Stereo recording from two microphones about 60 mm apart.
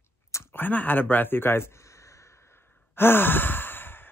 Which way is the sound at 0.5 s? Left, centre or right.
Left.